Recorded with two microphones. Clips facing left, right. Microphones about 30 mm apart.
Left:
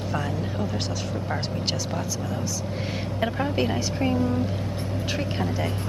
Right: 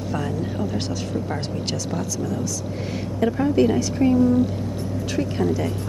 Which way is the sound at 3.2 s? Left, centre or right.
Left.